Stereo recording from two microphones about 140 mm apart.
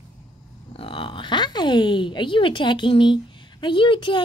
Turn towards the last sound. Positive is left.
turn(degrees=35)  # may be behind; listen again after turning